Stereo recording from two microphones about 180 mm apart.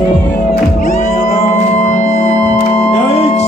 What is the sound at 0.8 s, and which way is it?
Music, 45° left (ahead or behind).